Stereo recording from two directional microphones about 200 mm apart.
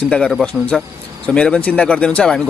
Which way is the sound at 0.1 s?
5° left (ahead or behind).